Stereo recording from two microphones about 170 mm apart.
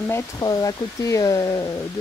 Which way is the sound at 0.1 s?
20° left (ahead or behind).